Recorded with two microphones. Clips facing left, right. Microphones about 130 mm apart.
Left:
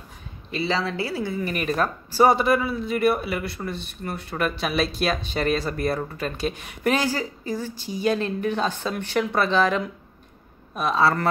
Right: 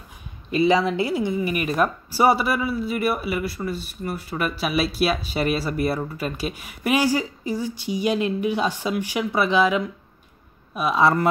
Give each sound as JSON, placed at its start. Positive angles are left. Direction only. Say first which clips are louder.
{"t": 0.6, "sound": "speech", "louder": "right 6 dB", "side_deg": -15}
{"t": 11.0, "sound": "speech", "louder": "right 2 dB", "side_deg": -15}